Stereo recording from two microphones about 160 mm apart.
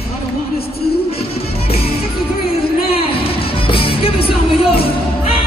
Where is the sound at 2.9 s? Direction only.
35° left (ahead or behind).